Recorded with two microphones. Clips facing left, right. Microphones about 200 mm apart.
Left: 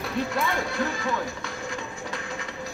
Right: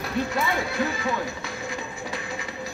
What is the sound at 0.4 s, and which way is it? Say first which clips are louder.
Speech: right 1 dB; 5° right (ahead or behind).